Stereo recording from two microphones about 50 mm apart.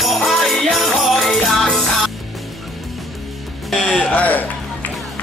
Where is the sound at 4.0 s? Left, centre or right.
Left.